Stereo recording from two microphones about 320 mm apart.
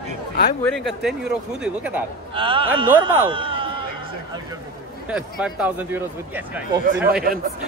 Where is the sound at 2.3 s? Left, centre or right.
Centre.